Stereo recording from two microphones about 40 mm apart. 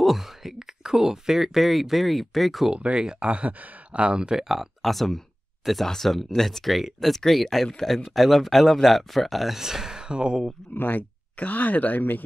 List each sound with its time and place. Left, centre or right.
0.0 s speech: centre
2.7 s speech: right
3.3 s speech: right; by 4.5 s centre
4.5 s speech: centre
9.6 s speech: centre
10.7 s speech: left